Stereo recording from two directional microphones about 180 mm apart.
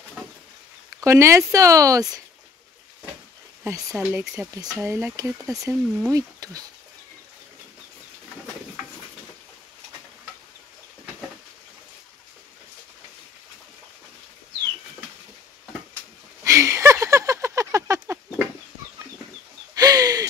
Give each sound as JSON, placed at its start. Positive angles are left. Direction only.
{"t": 1.0, "sound": "speech", "side_deg": -15}
{"t": 3.6, "sound": "speech", "side_deg": -15}
{"t": 4.0, "sound": "speech", "side_deg": -5}
{"t": 4.8, "sound": "speech", "side_deg": -15}
{"t": 16.4, "sound": "a sound", "side_deg": -15}
{"t": 19.7, "sound": "a sound", "side_deg": -20}